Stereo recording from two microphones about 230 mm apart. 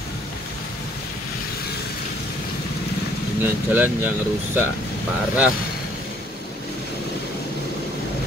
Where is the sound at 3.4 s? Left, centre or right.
Centre.